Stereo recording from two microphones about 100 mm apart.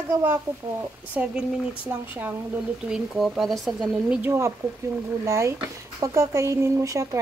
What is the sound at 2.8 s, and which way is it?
Speech, 5° right (ahead or behind).